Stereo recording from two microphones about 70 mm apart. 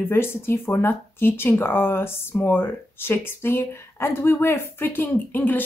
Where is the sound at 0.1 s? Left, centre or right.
Left.